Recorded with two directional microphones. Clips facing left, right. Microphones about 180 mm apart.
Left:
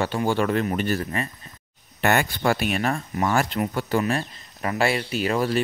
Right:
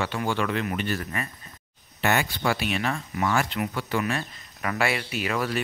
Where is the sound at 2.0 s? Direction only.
50° left (ahead or behind).